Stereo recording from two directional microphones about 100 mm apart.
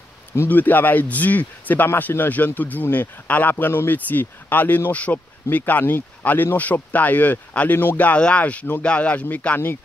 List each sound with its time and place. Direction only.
0.4 s speech: 20° left (ahead or behind)